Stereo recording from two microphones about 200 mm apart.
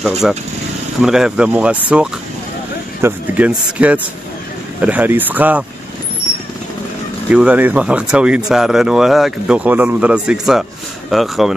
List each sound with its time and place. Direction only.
0.2 s speech: 5° right (ahead or behind)
7.2 s speech: 5° right (ahead or behind)